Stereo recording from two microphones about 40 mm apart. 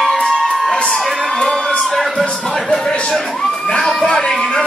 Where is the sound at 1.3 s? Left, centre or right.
Centre.